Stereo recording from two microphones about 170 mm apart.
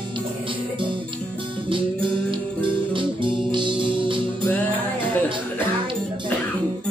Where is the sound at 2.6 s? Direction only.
30° right (ahead or behind).